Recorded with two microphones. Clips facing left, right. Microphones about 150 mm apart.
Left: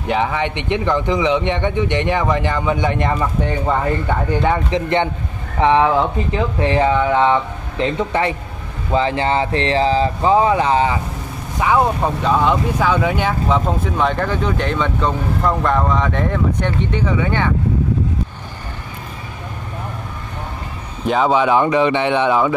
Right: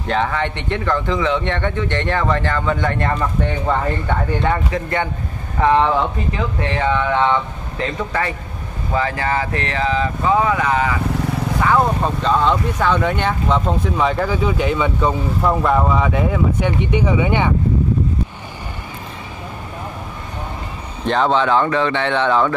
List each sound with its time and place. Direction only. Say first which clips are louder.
0.0 s a man's voice: left 1 dB; 15° left (ahead or behind)
4.7 s speech: left 4 dB; 20° left (ahead or behind)
5.6 s a man's voice: left 1 dB; 10° left (ahead or behind)
6.6 s speech: left 6 dB; 30° left (ahead or behind)
8.1 s speech: left 3 dB; 25° left (ahead or behind)
11.6 s speech: left 2 dB; 10° left (ahead or behind); by 17.5 s 15° right (ahead or behind)
21.0 s a man's voice: left 1 dB; 5° left (ahead or behind)